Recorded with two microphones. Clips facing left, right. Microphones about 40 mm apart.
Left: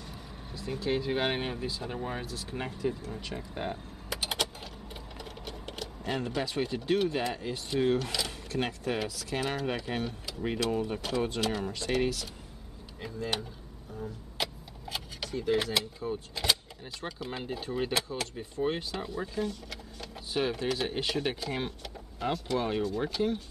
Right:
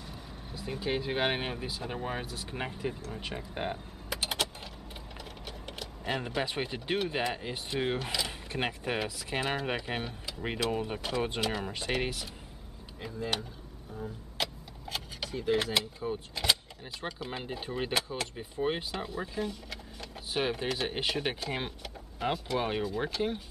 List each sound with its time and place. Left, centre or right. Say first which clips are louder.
0.0 s speech: even; centre
3.7 s mechanisms: even; centre
5.1 s sewing machine: left 2 dB; centre
6.1 s speech: left 1 dB; centre
13.0 s speech: even; centre
20.9 s speech: left 1 dB; centre